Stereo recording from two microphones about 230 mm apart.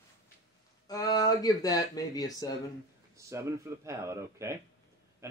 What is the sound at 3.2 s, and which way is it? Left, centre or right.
A man's voice, centre.